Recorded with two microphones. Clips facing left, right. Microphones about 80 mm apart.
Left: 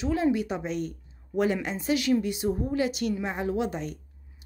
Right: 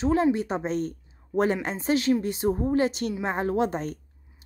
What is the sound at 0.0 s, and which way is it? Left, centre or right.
Speech, right.